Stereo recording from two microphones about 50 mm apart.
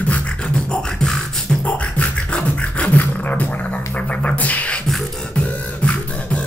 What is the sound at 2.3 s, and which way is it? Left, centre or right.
Beatboxing, left.